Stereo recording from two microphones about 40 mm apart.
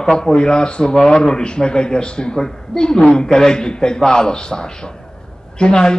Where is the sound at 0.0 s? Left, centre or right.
Centre.